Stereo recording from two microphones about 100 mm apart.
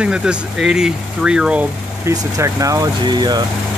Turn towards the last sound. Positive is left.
turn(degrees=-45)  # may be behind; listen again after turning